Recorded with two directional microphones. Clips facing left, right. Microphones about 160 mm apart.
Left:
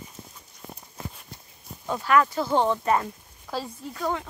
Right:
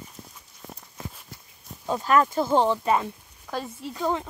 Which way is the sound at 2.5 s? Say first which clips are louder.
Even; 10° right (ahead or behind).